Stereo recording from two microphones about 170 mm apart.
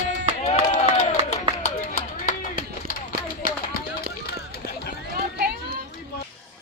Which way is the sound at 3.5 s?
60° left (ahead or behind).